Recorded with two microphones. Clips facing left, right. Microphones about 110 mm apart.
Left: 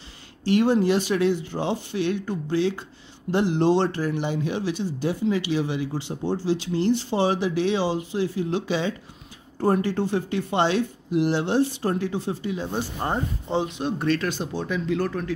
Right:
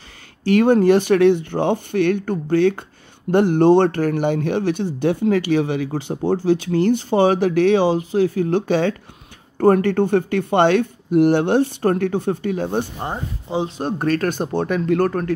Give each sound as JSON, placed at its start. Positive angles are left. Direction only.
{"t": 0.4, "sound": "speech", "side_deg": -55}